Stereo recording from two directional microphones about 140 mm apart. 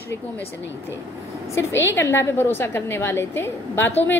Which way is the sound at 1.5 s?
20° left (ahead or behind).